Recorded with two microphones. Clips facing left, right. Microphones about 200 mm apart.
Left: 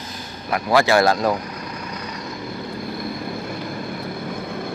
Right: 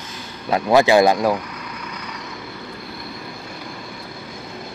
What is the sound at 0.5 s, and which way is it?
Speech, 20° right (ahead or behind).